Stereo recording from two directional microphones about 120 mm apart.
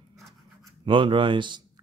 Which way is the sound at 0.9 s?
45° right (ahead or behind).